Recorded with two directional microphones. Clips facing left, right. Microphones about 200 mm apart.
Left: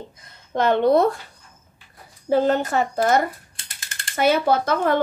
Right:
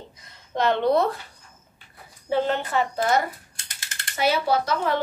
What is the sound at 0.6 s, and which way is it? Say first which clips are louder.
Speech: left 4 dB; 50° left (ahead or behind).